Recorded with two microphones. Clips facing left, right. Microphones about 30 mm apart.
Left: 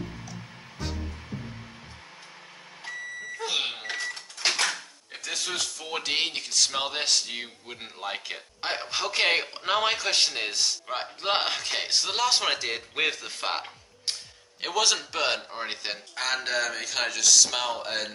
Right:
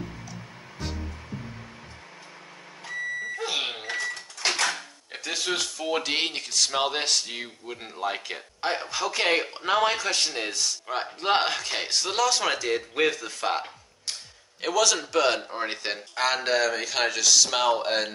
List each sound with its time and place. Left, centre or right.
0.0 s music: centre
3.4 s a sound: centre
3.9 s cash register: centre
4.6 s speech: centre
7.6 s a man's voice: centre
8.8 s a man's voice: left
10.9 s a man's voice: centre
12.3 s a man's voice: left
13.2 s music: left
14.6 s a man's voice: left
15.1 s speech: centre
16.2 s speech: centre